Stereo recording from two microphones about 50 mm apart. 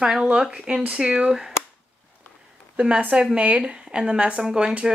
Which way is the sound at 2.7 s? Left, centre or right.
Right.